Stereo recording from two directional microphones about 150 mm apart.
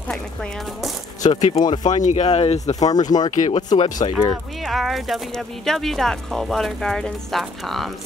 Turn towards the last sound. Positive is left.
turn(degrees=0)  # may be behind; listen again after turning